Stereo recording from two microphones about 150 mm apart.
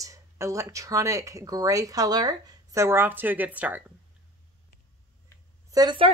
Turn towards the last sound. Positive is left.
turn(degrees=-25)  # may be behind; listen again after turning